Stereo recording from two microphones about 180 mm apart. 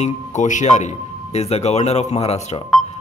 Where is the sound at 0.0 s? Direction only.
40° left (ahead or behind).